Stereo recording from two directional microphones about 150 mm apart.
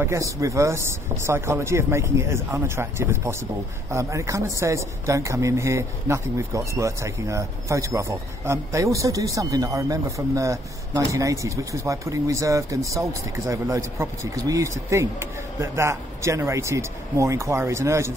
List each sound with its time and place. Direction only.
0.0 s speech: 20° right (ahead or behind)